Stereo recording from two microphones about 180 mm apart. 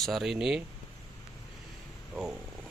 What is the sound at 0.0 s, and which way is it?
Speech, centre (ahead or behind).